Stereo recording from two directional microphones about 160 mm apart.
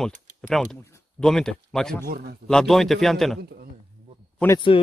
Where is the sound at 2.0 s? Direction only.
70° right (ahead or behind).